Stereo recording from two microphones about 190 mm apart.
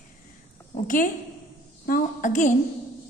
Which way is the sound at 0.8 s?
45° left (ahead or behind).